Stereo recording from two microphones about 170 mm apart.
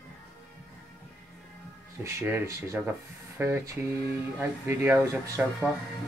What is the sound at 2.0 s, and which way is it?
Speech, 15° right (ahead or behind).